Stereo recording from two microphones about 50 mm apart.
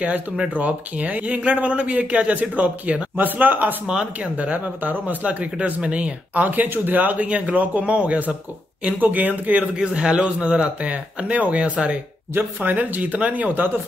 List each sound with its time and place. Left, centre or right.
0.6 s speech: right
3.8 s speech: centre